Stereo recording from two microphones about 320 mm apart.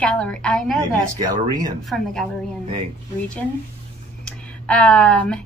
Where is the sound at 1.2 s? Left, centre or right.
Centre.